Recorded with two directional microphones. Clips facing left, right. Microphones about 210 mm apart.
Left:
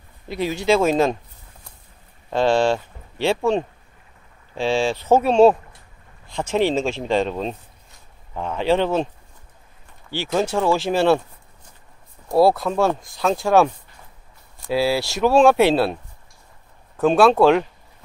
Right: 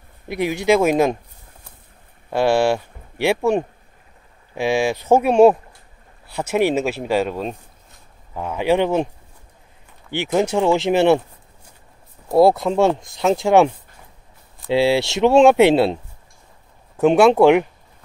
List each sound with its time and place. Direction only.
0.3 s speech: 15° right (ahead or behind)
2.3 s speech: 10° right (ahead or behind)
10.1 s speech: 20° right (ahead or behind)
12.4 s speech: 20° right (ahead or behind)